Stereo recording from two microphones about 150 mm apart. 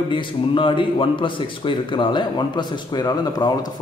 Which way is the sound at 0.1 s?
35° left (ahead or behind).